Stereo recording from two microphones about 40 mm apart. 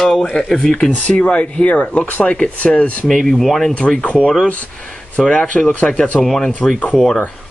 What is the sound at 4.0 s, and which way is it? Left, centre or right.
Speech, left.